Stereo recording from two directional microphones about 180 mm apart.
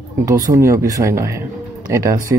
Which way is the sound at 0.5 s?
15° right (ahead or behind).